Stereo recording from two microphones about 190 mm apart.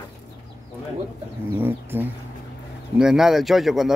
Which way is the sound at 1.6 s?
10° right (ahead or behind).